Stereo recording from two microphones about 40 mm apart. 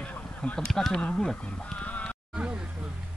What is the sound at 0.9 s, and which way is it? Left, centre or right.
Speech, left.